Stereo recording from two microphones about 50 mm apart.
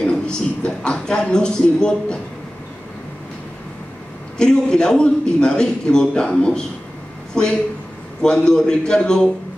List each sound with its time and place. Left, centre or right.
0.0 s speech: centre
4.4 s a man's voice: centre